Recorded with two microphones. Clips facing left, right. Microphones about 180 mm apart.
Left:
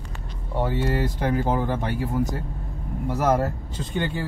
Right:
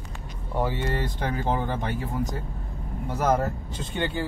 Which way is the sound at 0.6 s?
5° left (ahead or behind).